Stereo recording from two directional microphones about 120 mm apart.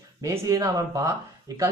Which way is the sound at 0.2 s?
25° right (ahead or behind).